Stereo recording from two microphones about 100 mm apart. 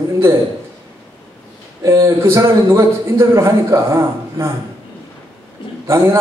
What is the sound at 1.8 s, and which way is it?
A man's voice, 30° right (ahead or behind).